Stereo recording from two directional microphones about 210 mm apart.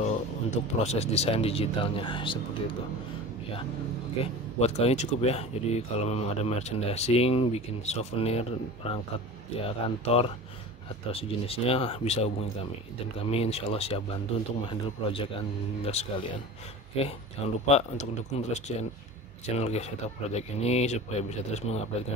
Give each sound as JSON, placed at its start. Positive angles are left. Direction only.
{"t": 0.0, "sound": "speech", "side_deg": 30}
{"t": 4.2, "sound": "speech", "side_deg": 30}